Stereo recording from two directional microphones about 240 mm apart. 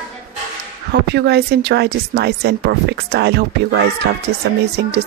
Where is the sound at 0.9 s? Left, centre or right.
Right.